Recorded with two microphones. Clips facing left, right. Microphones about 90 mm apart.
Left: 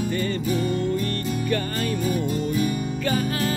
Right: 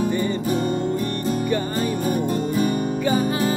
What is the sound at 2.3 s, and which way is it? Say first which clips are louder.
Music: right 3 dB; 45° right (ahead or behind).